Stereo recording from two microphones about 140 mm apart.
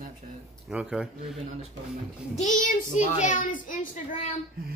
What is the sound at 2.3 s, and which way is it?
A child's voice, 60° left (ahead or behind).